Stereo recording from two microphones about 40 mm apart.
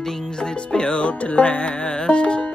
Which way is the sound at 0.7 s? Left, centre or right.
Left.